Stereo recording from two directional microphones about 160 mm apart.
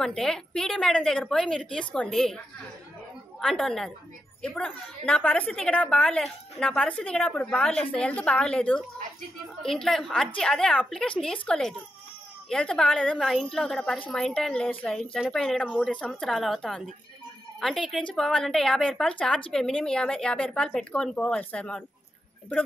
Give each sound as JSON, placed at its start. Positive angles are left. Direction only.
{"t": 0.0, "sound": "a woman's voice", "side_deg": 5}